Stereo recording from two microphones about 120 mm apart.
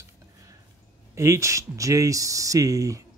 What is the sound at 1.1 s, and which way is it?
Speech, 25° right (ahead or behind).